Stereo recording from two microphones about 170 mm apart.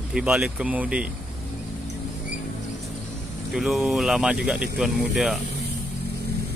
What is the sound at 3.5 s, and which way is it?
Speech, centre (ahead or behind).